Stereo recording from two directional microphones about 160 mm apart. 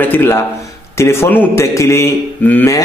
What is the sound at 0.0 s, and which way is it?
A man's voice, 15° left (ahead or behind).